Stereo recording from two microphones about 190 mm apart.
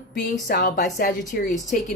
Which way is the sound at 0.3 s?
45° left (ahead or behind).